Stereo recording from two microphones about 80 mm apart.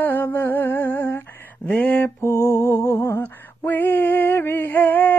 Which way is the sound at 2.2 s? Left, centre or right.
Left.